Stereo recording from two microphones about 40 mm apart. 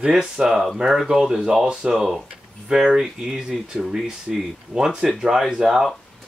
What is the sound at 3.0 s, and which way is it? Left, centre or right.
Speech, centre.